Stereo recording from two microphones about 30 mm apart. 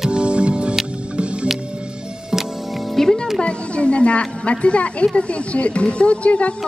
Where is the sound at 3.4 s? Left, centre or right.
Left.